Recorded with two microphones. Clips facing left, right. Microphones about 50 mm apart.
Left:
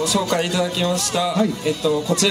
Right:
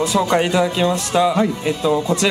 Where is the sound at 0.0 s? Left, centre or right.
Right.